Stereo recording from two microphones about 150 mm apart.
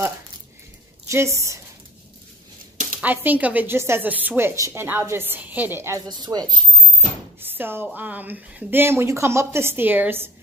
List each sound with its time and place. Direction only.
1.0 s a woman's voice: 20° right (ahead or behind)
3.0 s a woman's voice: 10° right (ahead or behind); by 6.6 s 25° right (ahead or behind)
7.3 s a woman's voice: 15° right (ahead or behind)